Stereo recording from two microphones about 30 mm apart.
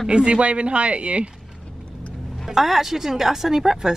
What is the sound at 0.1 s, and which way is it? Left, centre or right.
Speech, right.